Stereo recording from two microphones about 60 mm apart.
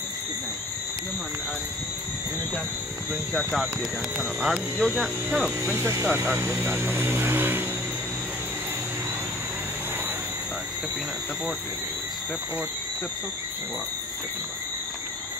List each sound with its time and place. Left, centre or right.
4.4 s speech: centre
5.8 s speech: right
6.6 s vehicle: right